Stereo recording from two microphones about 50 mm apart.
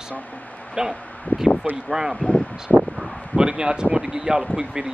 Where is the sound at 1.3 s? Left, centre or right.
Left.